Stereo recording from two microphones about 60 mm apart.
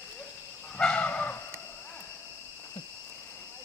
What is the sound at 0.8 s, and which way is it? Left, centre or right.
Livestock, left.